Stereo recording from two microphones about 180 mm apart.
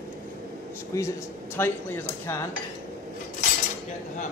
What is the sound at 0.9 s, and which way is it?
Speech, 15° left (ahead or behind).